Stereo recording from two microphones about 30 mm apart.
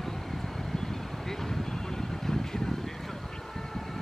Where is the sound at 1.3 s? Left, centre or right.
Centre.